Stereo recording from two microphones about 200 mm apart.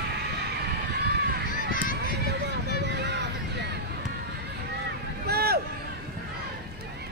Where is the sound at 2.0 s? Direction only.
55° right (ahead or behind).